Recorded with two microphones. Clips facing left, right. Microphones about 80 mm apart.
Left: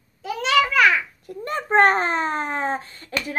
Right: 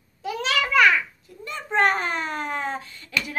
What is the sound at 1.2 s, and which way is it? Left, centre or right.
A woman's voice, left.